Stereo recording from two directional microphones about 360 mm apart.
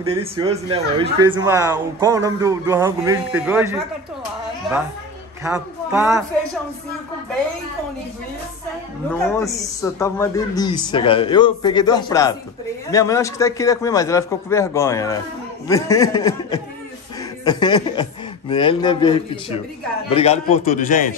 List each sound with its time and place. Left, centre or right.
0.0 s speech: centre
5.4 s speech: centre
9.1 s a man's voice: centre